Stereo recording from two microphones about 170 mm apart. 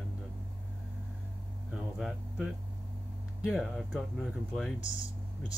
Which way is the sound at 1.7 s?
5° right (ahead or behind).